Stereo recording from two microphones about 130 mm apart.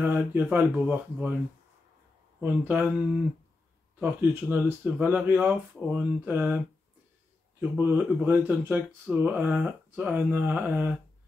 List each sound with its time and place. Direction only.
0.0 s speech: 15° right (ahead or behind)
2.4 s speech: 10° right (ahead or behind)
4.0 s speech: 15° right (ahead or behind)
7.7 s speech: 15° right (ahead or behind)